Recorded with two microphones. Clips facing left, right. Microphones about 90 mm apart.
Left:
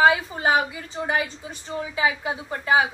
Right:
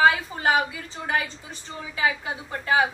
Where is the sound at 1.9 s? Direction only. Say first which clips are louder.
Left 1 dB; 20° left (ahead or behind).